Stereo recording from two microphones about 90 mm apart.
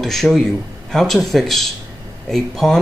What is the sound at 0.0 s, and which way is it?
A man's voice, 5° left (ahead or behind).